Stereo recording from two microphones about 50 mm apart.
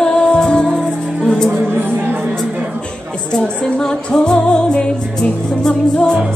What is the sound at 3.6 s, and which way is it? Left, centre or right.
Music, centre.